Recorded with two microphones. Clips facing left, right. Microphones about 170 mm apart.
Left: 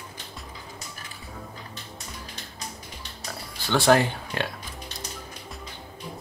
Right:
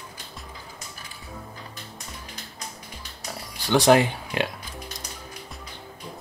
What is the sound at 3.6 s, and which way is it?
Speech, 15° right (ahead or behind).